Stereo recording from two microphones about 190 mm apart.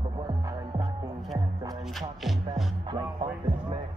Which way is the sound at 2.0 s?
Centre (ahead or behind).